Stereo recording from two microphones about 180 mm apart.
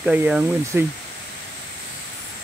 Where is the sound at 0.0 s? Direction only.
5° right (ahead or behind).